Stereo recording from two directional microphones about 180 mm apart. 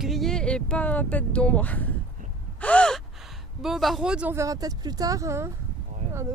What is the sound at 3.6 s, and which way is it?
Speech, centre (ahead or behind).